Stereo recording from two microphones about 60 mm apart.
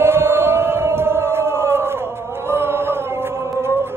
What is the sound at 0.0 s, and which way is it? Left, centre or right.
Chant, right.